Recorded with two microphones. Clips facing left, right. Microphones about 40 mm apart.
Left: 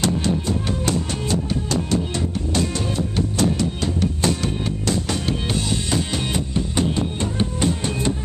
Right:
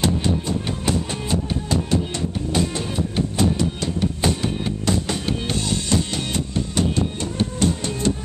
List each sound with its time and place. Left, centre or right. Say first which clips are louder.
0.0 s music: even; centre
5.4 s music: left 1 dB; centre